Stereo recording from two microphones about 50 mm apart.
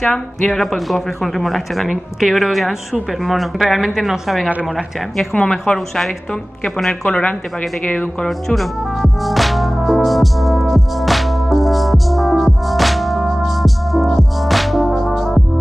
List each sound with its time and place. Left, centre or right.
0.0 s speech: centre
5.4 s a woman's voice: centre
7.1 s speech: left
8.3 s music: centre